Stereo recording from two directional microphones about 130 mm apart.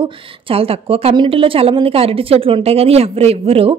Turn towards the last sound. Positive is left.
turn(degrees=-50)  # may be behind; listen again after turning